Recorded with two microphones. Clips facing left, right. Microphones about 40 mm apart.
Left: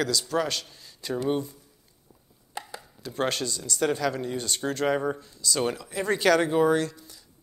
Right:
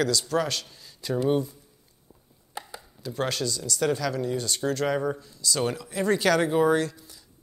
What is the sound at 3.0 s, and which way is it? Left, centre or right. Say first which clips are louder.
Speech: even; left.